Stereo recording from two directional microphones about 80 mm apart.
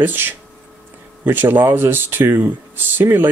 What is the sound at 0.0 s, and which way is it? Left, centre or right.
Speech, right.